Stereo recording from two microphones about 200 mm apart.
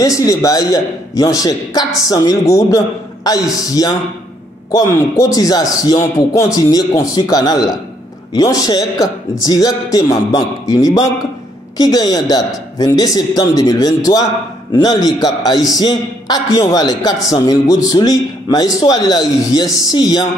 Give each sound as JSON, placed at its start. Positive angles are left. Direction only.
{"t": 0.0, "sound": "a man's voice", "side_deg": 15}